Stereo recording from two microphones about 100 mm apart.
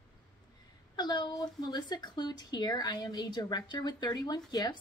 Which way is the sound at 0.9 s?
45° left (ahead or behind).